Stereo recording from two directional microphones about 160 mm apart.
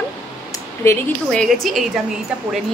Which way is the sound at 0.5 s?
15° left (ahead or behind).